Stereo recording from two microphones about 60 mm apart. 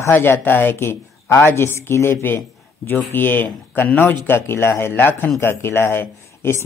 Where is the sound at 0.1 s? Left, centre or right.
Left.